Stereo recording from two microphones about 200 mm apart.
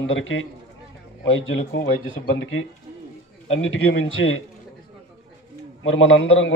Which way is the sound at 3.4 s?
70° left (ahead or behind).